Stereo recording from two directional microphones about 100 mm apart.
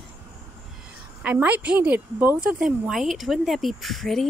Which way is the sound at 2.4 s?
10° right (ahead or behind).